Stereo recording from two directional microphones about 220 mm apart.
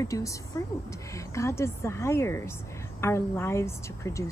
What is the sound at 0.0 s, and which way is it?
Speech, 15° left (ahead or behind).